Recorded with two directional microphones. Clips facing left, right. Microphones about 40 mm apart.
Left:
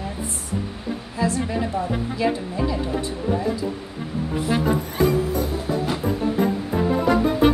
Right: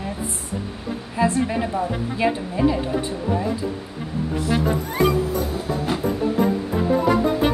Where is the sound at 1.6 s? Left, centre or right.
Centre.